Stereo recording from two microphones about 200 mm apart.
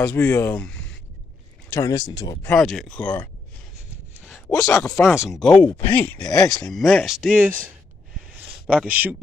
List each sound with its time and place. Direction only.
0.0 s speech: 10° left (ahead or behind)
2.5 s speech: centre (ahead or behind)
4.7 s speech: 15° left (ahead or behind)
5.1 s speech: centre (ahead or behind); by 6.5 s 15° left (ahead or behind)
6.5 s speech: centre (ahead or behind)
8.4 s a sound: 5° right (ahead or behind)